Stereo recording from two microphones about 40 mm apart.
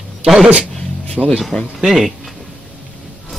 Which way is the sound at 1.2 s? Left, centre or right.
Right.